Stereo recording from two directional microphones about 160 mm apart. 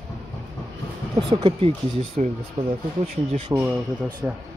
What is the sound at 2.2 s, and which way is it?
Speech, 50° right (ahead or behind).